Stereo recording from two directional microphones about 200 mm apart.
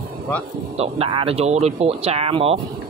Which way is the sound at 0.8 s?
25° right (ahead or behind).